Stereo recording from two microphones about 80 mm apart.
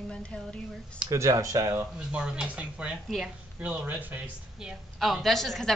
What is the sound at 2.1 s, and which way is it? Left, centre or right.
A woman's voice, centre.